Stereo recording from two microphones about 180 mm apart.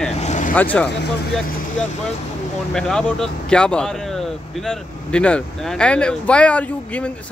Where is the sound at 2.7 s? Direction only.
5° left (ahead or behind).